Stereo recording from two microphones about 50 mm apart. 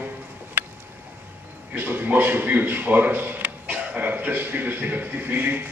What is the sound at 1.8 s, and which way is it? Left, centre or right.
Speech, right.